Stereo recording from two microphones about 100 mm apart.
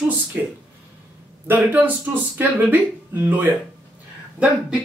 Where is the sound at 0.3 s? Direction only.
20° right (ahead or behind).